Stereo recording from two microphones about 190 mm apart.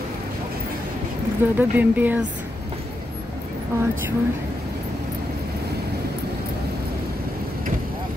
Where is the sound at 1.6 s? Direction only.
10° right (ahead or behind).